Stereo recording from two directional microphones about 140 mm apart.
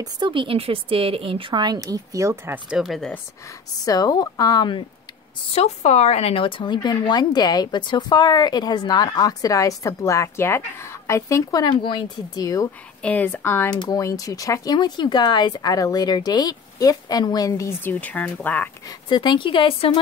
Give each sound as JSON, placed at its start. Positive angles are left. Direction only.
{"t": 0.0, "sound": "speech", "side_deg": -35}
{"t": 3.8, "sound": "speech", "side_deg": 25}
{"t": 5.5, "sound": "speech", "side_deg": 50}
{"t": 13.0, "sound": "speech", "side_deg": 10}
{"t": 18.9, "sound": "speech", "side_deg": 30}